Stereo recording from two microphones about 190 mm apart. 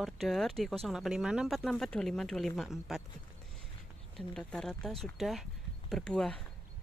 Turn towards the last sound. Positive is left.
turn(degrees=5)  # may be behind; listen again after turning